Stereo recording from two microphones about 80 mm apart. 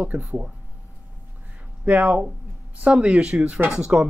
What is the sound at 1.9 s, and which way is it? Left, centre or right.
Speech, right.